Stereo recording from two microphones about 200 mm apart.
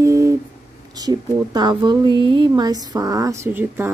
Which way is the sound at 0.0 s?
15° right (ahead or behind).